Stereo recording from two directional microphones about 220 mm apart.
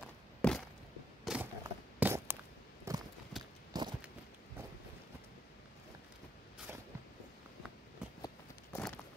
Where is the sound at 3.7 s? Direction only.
20° right (ahead or behind).